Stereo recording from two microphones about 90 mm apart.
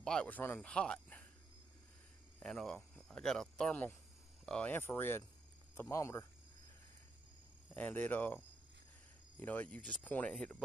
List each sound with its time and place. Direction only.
0.0 s speech: 10° left (ahead or behind)
0.3 s speech: 20° left (ahead or behind)
2.4 s speech: 5° left (ahead or behind)
4.7 s speech: 25° left (ahead or behind)
7.7 s speech: 20° left (ahead or behind)
9.4 s speech: 20° left (ahead or behind)